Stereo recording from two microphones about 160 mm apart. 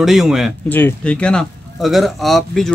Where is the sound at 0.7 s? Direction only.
10° left (ahead or behind).